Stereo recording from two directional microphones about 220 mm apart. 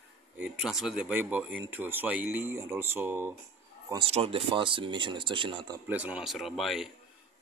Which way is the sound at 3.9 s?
25° right (ahead or behind).